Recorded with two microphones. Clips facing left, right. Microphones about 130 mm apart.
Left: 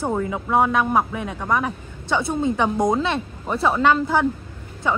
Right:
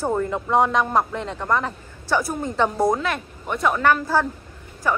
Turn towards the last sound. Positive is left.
turn(degrees=20)  # may be behind; listen again after turning